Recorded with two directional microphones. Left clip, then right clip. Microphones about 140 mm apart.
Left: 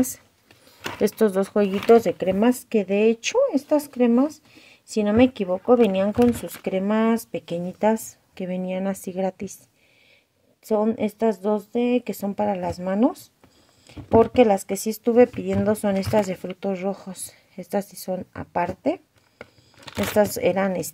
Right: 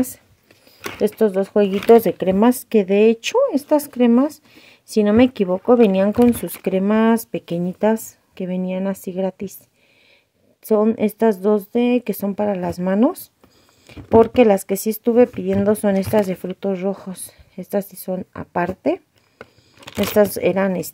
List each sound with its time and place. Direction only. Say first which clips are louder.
1.0 s speech: right 3 dB; 5° right (ahead or behind)
1.7 s speech: right 3 dB; 25° right (ahead or behind)
10.6 s speech: right 5 dB; 30° right (ahead or behind)
19.3 s a sound: right 2 dB; 40° right (ahead or behind)
20.2 s speech: right 4 dB; 25° right (ahead or behind)